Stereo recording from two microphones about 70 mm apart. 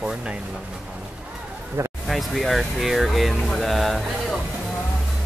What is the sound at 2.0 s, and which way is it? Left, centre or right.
Speech, centre.